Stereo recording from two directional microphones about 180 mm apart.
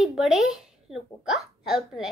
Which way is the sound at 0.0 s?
Centre (ahead or behind).